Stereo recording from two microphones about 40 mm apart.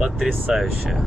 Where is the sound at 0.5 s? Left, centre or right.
Centre.